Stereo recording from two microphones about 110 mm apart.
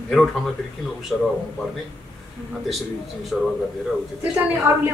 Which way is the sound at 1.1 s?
Centre (ahead or behind).